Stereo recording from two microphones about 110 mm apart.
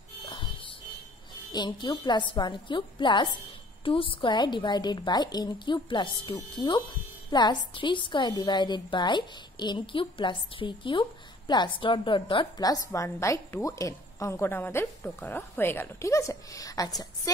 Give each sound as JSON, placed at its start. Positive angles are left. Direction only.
{"t": 1.5, "sound": "a woman's voice", "side_deg": 40}
{"t": 12.6, "sound": "a woman's voice", "side_deg": 30}